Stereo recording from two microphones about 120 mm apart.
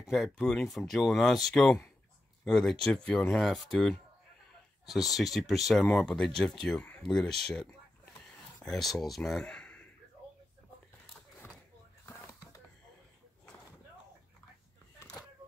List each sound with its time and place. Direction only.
0.0 s speech: centre (ahead or behind)
8.6 s speech: 5° left (ahead or behind)
12.1 s music: 20° left (ahead or behind)